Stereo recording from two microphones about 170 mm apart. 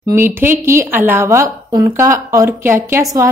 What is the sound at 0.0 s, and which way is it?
A woman's voice, 15° right (ahead or behind).